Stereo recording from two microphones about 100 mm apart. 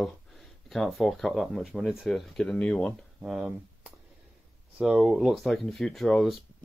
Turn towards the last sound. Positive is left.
turn(degrees=0)  # may be behind; listen again after turning